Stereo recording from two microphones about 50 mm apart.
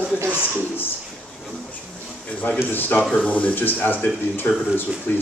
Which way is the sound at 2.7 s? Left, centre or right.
Left.